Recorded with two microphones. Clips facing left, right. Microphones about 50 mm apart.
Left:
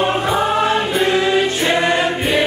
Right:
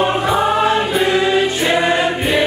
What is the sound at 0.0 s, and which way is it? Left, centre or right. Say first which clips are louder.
Choir: right 1 dB; centre.